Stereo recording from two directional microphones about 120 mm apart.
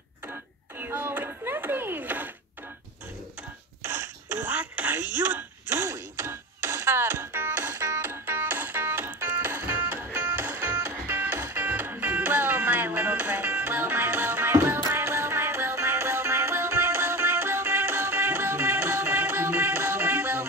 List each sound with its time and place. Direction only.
0.3 s a sound: 15° right (ahead or behind)
3.8 s throat clearing: 20° right (ahead or behind)
14.9 s music: 20° right (ahead or behind)